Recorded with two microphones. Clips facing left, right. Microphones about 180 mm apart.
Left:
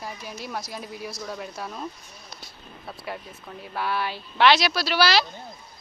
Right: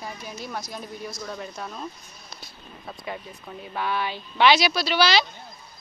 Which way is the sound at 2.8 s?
Centre (ahead or behind).